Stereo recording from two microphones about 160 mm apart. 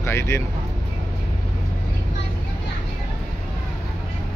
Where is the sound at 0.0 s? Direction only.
15° left (ahead or behind).